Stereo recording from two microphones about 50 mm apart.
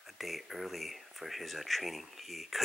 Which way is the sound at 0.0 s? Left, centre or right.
Centre.